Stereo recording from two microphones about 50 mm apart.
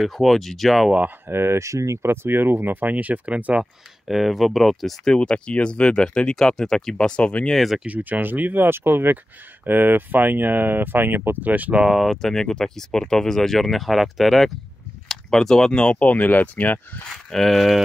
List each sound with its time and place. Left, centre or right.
0.0 s speech: centre
1.2 s speech: right
1.6 s speech: right
2.0 s speech: right
4.1 s speech: centre
5.0 s speech: centre
7.5 s speech: centre
7.8 s speech: right
8.6 s speech: right
11.8 s speech: centre
12.1 s speech: centre; by 17.0 s left
17.1 s speech: centre